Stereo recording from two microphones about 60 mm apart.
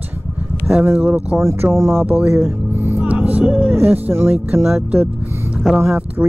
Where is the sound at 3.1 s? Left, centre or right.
Right.